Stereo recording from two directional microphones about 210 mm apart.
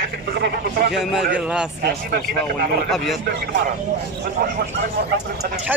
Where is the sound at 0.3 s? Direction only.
50° right (ahead or behind).